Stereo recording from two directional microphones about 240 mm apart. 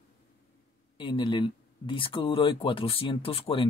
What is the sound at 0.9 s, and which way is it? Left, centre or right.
Speech, centre.